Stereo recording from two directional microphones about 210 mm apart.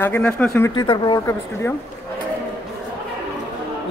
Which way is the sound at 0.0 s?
10° left (ahead or behind).